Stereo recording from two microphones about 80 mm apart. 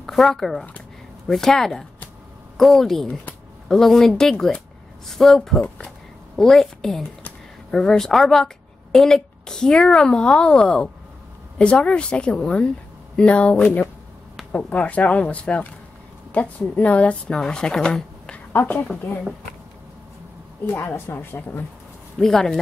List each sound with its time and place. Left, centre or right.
0.0 s a woman's voice: centre
18.5 s a woman's voice: left
20.6 s a woman's voice: left
22.2 s speech: centre